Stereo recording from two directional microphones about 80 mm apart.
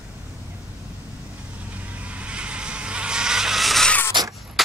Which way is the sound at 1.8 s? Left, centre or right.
Centre.